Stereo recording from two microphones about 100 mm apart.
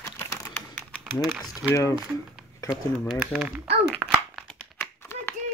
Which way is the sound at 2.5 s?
30° left (ahead or behind).